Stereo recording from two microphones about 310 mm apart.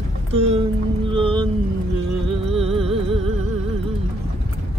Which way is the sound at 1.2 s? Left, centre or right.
Centre.